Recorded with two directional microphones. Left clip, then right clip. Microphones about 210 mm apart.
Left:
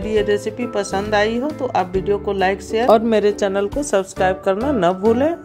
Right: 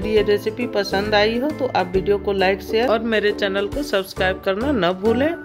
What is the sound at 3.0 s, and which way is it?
A woman's voice, 15° left (ahead or behind).